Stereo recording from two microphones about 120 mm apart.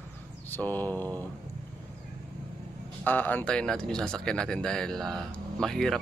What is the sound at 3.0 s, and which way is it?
Speech, 15° left (ahead or behind).